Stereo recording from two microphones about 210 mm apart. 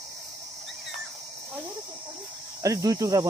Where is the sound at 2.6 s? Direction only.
15° right (ahead or behind).